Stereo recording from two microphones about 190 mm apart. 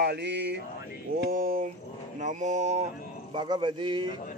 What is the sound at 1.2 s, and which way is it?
Speech, 50° right (ahead or behind).